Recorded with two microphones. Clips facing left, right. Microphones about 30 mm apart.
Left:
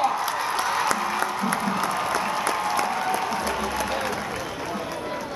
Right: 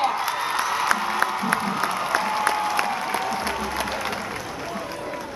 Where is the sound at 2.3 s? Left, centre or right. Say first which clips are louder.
Right 2 dB; right.